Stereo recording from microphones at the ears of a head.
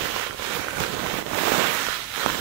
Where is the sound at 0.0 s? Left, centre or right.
Right.